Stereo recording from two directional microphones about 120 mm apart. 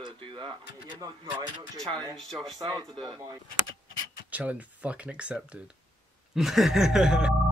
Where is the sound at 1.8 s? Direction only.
5° left (ahead or behind).